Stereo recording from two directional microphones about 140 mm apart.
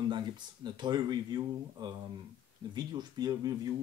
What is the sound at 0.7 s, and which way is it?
Speech, 35° right (ahead or behind).